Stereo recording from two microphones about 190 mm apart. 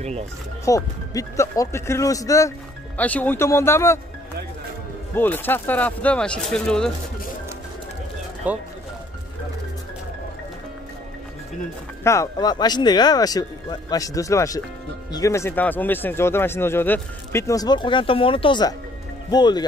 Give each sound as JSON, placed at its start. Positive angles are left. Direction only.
{"t": 0.7, "sound": "speech", "side_deg": 15}
{"t": 5.1, "sound": "speech", "side_deg": 10}
{"t": 8.5, "sound": "speech", "side_deg": -10}
{"t": 12.0, "sound": "speech", "side_deg": 15}